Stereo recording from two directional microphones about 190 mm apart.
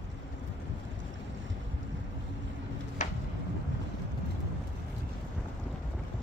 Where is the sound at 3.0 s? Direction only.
40° left (ahead or behind).